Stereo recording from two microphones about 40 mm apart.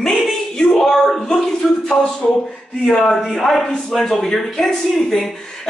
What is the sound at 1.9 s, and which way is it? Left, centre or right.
A man's voice, left.